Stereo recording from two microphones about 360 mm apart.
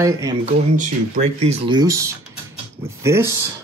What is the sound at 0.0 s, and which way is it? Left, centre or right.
Speech, centre.